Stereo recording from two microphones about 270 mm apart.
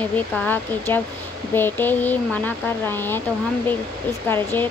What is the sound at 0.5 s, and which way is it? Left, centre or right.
Speech, centre.